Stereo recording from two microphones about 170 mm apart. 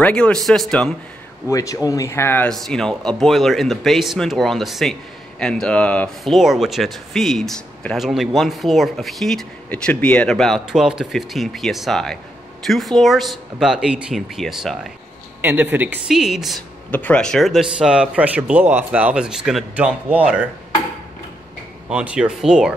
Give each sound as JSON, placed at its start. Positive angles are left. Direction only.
{"t": 0.0, "sound": "speech", "side_deg": 5}
{"t": 1.5, "sound": "speech", "side_deg": 20}
{"t": 2.5, "sound": "speech", "side_deg": 0}
{"t": 21.8, "sound": "speech", "side_deg": -5}